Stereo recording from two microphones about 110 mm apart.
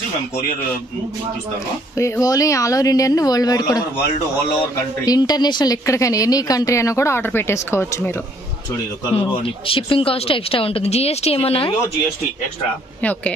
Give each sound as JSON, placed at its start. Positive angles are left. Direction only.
{"t": 2.0, "sound": "speech", "side_deg": 30}
{"t": 5.0, "sound": "speech", "side_deg": 35}
{"t": 5.9, "sound": "a woman's voice", "side_deg": 30}
{"t": 9.1, "sound": "speech", "side_deg": 55}